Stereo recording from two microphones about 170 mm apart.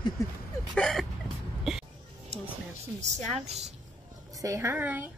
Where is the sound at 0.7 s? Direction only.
5° left (ahead or behind).